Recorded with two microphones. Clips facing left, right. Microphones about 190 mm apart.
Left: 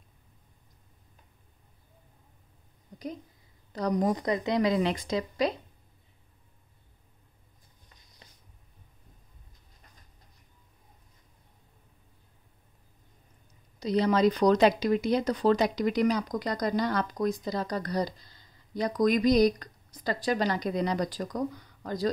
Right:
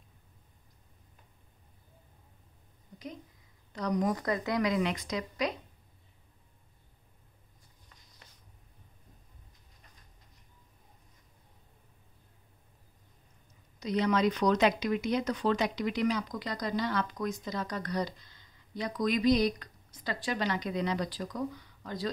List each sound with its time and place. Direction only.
3.7 s speech: 35° left (ahead or behind)
4.1 s a woman's voice: 20° left (ahead or behind)
13.7 s speech: 35° left (ahead or behind)